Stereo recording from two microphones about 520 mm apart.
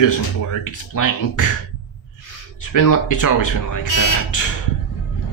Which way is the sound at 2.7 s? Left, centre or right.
Left.